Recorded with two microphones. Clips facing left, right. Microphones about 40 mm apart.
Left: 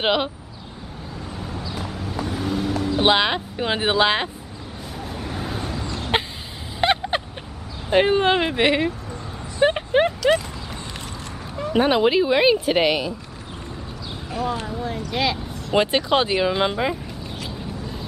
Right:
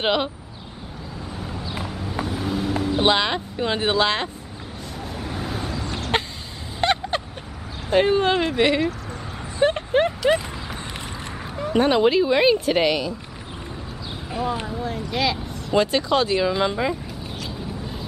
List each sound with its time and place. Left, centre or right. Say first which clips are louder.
0.0 s speech: left 1 dB; centre
1.6 s vehicle: even; right
1.9 s vehicle: even; centre
3.0 s speech: left 2 dB; centre
5.0 s vehicle: even; centre
6.1 s a sound: left 1 dB; centre
6.8 s vehicle: left 1 dB; centre
7.9 s speech: left 1 dB; centre
9.6 s vehicle: left 1 dB; centre
11.7 s speech: even; centre
14.3 s a sound: even; centre
15.1 s speech: even; centre
15.7 s speech: left 1 dB; left